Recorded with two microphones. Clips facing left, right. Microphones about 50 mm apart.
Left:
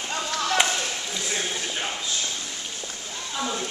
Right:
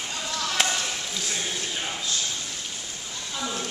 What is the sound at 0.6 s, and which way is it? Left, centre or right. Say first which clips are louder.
Chop: even; centre.